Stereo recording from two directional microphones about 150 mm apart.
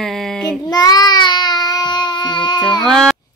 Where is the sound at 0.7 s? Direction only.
25° left (ahead or behind).